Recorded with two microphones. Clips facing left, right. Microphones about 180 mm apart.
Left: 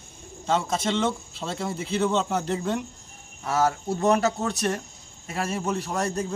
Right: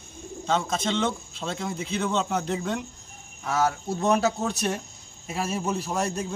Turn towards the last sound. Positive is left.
turn(degrees=-5)  # may be behind; listen again after turning